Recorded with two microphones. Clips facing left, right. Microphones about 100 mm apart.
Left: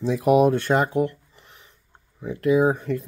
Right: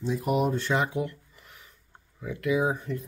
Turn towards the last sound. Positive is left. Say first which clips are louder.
# left 7 dB
turn(degrees=65)  # may be behind; listen again after turning